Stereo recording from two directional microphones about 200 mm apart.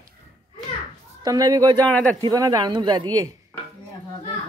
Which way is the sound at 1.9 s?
5° left (ahead or behind).